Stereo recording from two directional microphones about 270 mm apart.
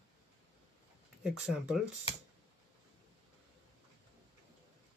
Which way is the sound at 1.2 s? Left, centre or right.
Centre.